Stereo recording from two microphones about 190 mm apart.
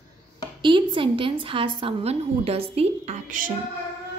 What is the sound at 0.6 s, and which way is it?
A woman's voice, 25° right (ahead or behind).